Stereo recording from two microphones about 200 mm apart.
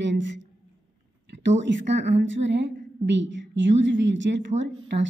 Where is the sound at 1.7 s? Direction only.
65° right (ahead or behind).